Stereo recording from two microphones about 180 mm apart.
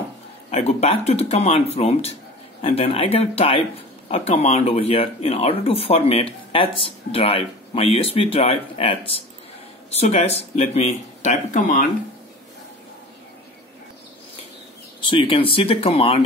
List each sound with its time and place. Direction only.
0.5 s speech: 35° left (ahead or behind)
15.0 s speech: 30° left (ahead or behind)